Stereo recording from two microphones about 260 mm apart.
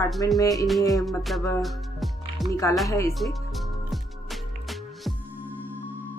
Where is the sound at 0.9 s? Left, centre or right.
Centre.